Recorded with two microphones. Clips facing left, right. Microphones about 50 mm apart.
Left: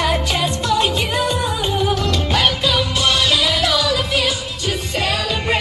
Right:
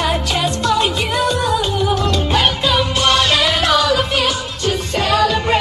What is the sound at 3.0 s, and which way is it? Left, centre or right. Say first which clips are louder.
Music: right 3 dB; right.